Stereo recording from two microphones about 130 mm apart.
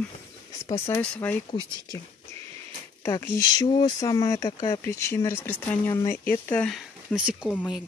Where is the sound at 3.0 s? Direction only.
20° left (ahead or behind).